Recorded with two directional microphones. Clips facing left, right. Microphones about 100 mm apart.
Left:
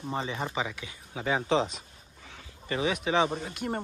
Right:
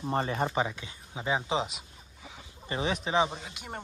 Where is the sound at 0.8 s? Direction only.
25° right (ahead or behind); by 1.8 s 10° right (ahead or behind).